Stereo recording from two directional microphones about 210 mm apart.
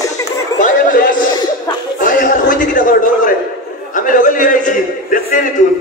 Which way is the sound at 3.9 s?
40° left (ahead or behind).